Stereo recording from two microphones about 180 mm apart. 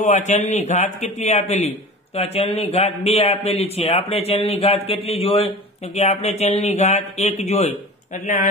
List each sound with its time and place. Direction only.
0.0 s a man's voice: 40° left (ahead or behind)